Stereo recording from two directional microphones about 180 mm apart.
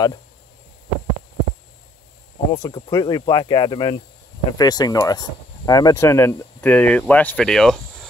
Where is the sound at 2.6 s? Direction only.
25° left (ahead or behind).